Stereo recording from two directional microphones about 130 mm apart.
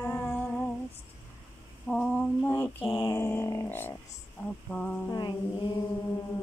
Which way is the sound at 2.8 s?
35° left (ahead or behind).